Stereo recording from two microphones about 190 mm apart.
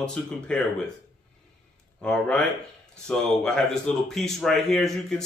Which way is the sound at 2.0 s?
5° left (ahead or behind).